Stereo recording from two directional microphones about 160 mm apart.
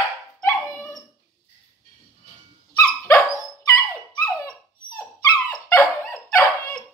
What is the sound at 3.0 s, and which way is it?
Dog, 20° left (ahead or behind).